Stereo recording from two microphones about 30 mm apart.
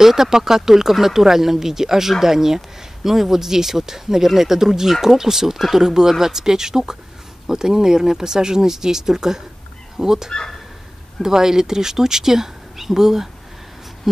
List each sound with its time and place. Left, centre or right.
0.0 s speech: centre